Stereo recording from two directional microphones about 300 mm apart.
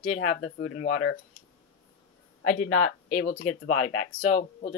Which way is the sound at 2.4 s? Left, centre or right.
Left.